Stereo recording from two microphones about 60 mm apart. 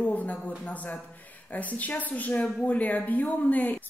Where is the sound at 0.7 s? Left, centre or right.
Left.